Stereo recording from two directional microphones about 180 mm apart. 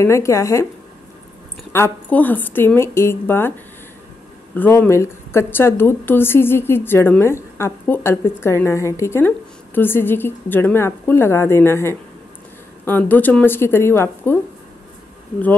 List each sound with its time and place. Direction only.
0.0 s a woman's voice: 15° left (ahead or behind)
1.7 s a woman's voice: 10° left (ahead or behind)
4.6 s a woman's voice: 10° left (ahead or behind)